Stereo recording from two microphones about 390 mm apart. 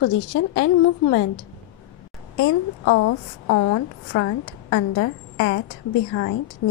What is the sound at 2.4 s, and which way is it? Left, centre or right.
A woman's voice, left.